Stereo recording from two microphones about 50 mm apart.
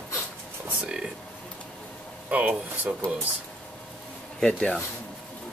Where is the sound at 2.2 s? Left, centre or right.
Right.